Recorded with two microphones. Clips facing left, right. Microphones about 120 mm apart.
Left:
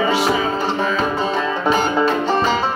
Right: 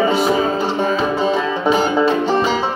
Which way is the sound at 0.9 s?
15° right (ahead or behind).